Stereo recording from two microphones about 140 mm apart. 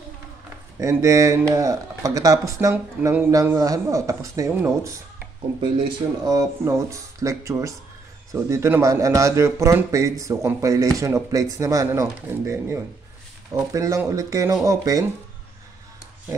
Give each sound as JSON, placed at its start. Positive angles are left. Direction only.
{"t": 0.7, "sound": "a man's voice", "side_deg": -20}
{"t": 5.6, "sound": "a man's voice", "side_deg": -35}